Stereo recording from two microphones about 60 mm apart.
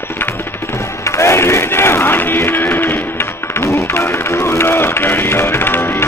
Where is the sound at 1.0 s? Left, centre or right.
Left.